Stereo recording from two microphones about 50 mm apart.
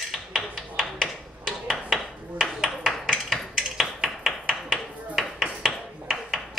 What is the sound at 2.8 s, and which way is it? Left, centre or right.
Hammer, centre.